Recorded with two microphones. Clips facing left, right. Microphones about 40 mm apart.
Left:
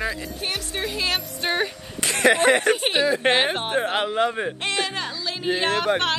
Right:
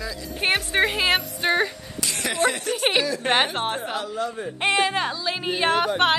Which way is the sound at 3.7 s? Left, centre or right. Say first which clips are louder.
Left 6 dB; left.